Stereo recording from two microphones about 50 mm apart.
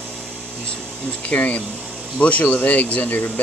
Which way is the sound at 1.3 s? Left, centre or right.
Left.